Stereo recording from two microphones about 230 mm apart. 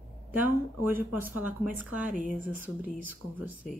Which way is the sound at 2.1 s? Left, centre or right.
Right.